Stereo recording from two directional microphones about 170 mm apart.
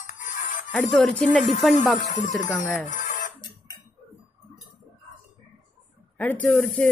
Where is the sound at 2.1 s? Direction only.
50° left (ahead or behind).